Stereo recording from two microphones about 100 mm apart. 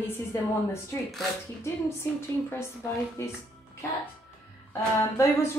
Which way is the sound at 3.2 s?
30° left (ahead or behind).